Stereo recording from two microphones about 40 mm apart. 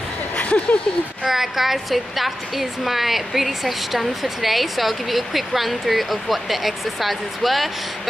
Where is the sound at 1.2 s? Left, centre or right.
Centre.